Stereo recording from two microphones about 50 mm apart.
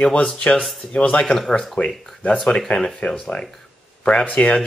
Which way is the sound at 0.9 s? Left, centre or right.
Left.